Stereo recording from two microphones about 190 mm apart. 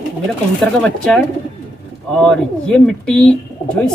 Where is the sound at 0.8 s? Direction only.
5° left (ahead or behind).